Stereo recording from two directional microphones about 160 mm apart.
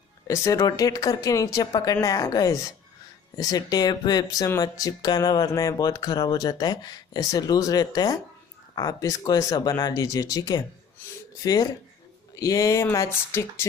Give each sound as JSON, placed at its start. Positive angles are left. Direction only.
{"t": 0.3, "sound": "speech", "side_deg": 20}